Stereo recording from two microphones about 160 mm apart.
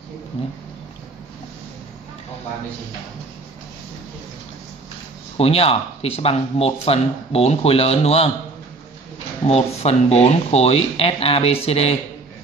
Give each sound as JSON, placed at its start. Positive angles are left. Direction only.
{"t": 5.4, "sound": "speech", "side_deg": 35}
{"t": 9.5, "sound": "speech", "side_deg": 40}